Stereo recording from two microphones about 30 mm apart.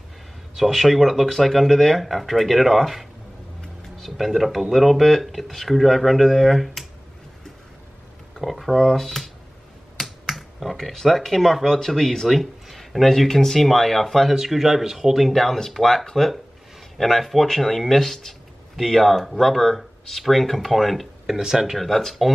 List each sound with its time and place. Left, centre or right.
0.6 s speech: centre
8.5 s speech: centre
12.3 s a sound: centre
13.0 s speech: centre
14.3 s speech: centre
15.2 s speech: centre
21.4 s speech: centre
21.7 s speech: centre